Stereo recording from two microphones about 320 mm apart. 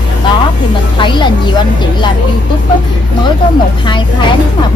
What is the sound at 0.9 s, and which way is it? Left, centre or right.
Speech, centre.